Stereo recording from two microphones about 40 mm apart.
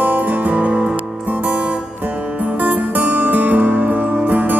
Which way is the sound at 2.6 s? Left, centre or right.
Right.